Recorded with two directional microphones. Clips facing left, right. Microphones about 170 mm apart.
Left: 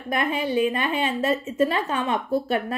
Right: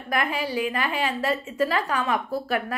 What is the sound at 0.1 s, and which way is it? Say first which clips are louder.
A woman's voice: left 3 dB; 25° left (ahead or behind).